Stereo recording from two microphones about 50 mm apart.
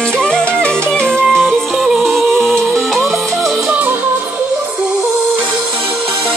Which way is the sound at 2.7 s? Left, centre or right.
Centre.